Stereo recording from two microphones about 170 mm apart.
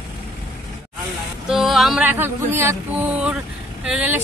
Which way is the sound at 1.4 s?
Centre (ahead or behind).